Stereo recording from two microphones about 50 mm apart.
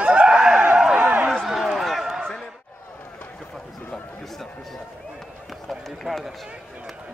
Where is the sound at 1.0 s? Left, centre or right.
Right.